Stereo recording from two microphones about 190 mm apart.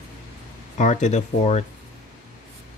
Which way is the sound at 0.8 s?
40° left (ahead or behind).